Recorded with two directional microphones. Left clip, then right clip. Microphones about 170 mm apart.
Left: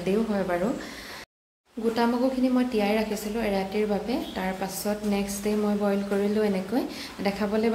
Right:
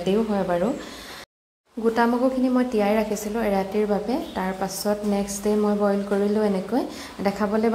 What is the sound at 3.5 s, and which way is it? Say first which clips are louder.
Speech: right 4 dB; 15° right (ahead or behind).